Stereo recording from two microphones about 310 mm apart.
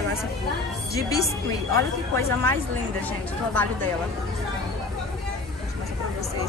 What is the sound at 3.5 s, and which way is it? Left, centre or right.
Speech, centre.